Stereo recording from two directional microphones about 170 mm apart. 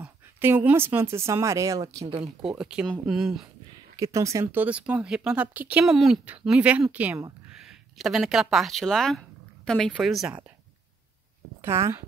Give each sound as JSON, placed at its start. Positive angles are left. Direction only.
{"t": 0.0, "sound": "speech", "side_deg": -10}
{"t": 2.4, "sound": "a woman's voice", "side_deg": -5}
{"t": 3.9, "sound": "a woman's voice", "side_deg": -20}
{"t": 11.6, "sound": "speech", "side_deg": -15}